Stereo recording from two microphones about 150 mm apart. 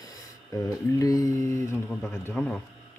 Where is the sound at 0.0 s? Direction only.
25° left (ahead or behind).